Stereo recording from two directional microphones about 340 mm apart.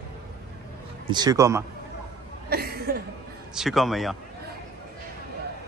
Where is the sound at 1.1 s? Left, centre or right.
Centre.